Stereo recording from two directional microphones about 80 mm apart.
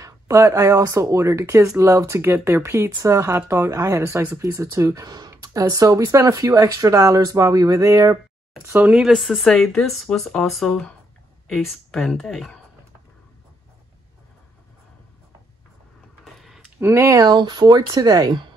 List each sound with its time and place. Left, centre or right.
0.0 s speech: right
4.4 s speech: right
8.6 s speech: right
8.9 s speech: centre
16.3 s a sound: centre
16.8 s speech: right
17.2 s speech: right